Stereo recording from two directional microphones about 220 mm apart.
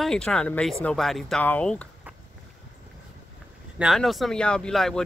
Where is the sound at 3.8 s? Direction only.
Centre (ahead or behind).